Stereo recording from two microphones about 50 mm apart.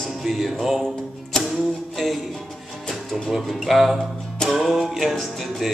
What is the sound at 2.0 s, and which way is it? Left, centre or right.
Music, centre.